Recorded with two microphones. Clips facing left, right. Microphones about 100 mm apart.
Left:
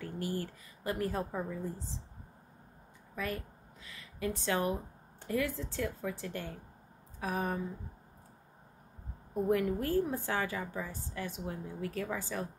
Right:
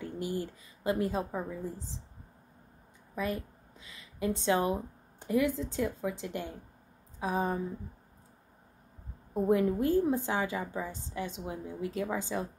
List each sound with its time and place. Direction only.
0.0 s a woman's voice: 20° right (ahead or behind)
3.2 s a woman's voice: 20° right (ahead or behind)
9.3 s a woman's voice: 25° right (ahead or behind)